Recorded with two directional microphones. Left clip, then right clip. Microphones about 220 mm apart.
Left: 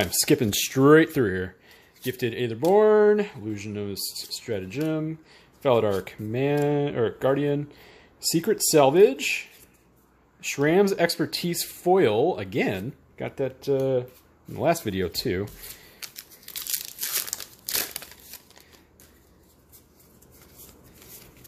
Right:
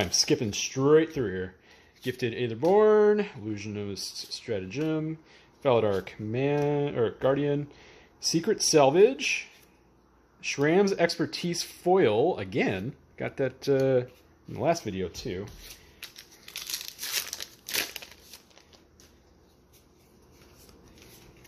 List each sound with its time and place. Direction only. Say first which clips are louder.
0.7 s speech: left 5 dB; 35° left (ahead or behind)
1.7 s speech: left 2 dB; 5° left (ahead or behind); by 14.0 s 10° right (ahead or behind)
14.5 s speech: left 3 dB; 10° left (ahead or behind)
15.0 s speech: left 7 dB; 30° left (ahead or behind)
17.4 s crumpling: even; 10° left (ahead or behind)